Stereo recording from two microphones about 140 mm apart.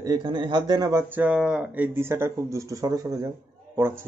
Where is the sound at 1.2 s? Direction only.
5° right (ahead or behind).